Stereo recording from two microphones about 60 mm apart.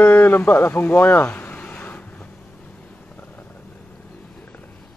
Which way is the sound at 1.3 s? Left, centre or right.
Left.